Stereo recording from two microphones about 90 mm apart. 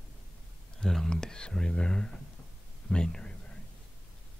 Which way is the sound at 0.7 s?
5° left (ahead or behind).